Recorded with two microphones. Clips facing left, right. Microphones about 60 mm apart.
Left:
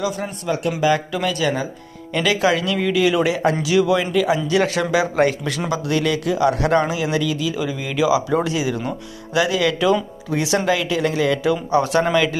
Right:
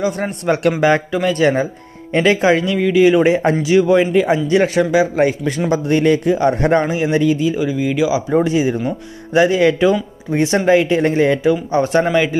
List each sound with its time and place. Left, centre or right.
0.0 s speech: right
1.1 s a man's voice: right
7.5 s a man's voice: right
12.0 s speech: centre